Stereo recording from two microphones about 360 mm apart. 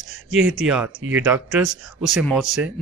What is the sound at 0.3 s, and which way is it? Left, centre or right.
Speech, right.